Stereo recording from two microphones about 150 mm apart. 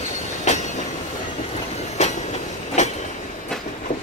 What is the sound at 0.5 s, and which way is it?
Train, 50° left (ahead or behind).